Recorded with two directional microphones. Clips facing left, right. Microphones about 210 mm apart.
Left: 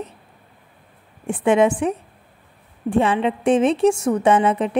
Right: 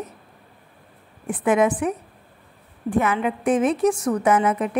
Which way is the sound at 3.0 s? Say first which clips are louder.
Left 3 dB; 30° left (ahead or behind).